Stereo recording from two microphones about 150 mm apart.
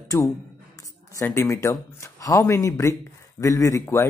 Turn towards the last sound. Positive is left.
turn(degrees=20)  # may be behind; listen again after turning